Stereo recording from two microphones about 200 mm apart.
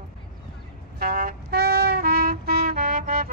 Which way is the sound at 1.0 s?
50° right (ahead or behind).